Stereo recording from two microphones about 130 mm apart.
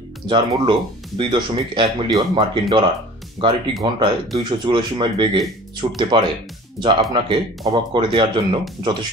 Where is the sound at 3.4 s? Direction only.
40° right (ahead or behind).